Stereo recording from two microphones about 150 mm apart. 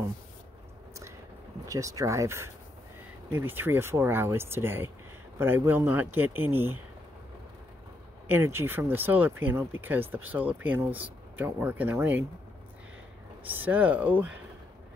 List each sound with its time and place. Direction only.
1.7 s speech: 20° right (ahead or behind)
8.3 s speech: 15° right (ahead or behind)
13.5 s speech: 10° right (ahead or behind)